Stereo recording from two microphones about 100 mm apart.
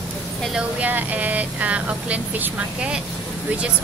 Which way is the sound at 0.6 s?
15° right (ahead or behind).